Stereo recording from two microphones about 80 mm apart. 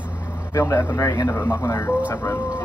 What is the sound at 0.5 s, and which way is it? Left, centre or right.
A man's voice, left.